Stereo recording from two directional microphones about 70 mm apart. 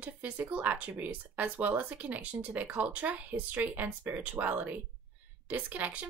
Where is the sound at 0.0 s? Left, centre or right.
Right.